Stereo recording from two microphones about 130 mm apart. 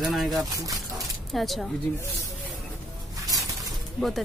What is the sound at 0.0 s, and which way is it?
Speech, centre (ahead or behind).